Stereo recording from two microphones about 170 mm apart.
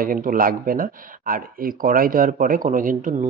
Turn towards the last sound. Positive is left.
turn(degrees=-50)  # may be behind; listen again after turning